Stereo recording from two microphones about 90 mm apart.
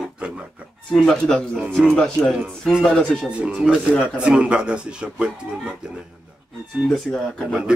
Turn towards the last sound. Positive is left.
turn(degrees=0)  # may be behind; listen again after turning